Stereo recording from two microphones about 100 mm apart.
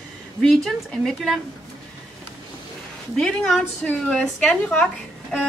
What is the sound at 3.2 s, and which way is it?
A woman's voice, 5° left (ahead or behind).